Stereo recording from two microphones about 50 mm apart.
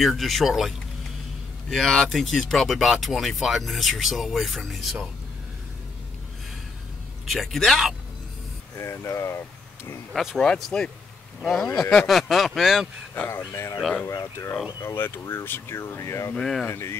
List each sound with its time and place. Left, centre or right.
0.0 s speech: centre
1.7 s speech: centre
2.1 s speech: centre
7.2 s speech: centre
8.7 s speech: left
10.1 s speech: centre
13.1 s speech: left
14.0 s speech: left
15.2 s speech: left
16.3 s speech: centre